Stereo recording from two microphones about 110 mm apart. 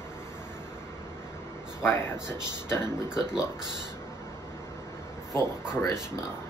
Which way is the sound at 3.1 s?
5° right (ahead or behind).